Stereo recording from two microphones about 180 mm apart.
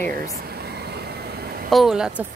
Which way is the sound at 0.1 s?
55° right (ahead or behind).